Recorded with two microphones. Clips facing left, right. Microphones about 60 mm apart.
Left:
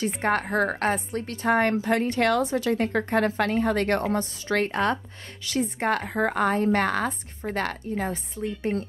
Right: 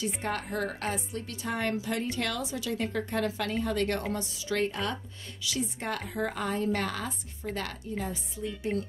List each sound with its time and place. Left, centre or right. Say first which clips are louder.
0.0 s a woman's voice: left 8 dB; left